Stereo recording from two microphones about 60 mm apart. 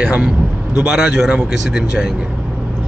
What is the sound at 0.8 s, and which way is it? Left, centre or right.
Speech, centre.